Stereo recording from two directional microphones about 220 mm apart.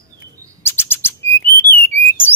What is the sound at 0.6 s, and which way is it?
Bird, 10° left (ahead or behind).